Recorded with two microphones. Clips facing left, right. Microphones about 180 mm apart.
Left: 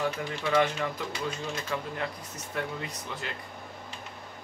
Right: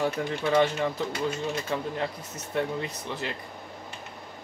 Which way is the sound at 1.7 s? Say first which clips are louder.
Right 3 dB; 30° right (ahead or behind).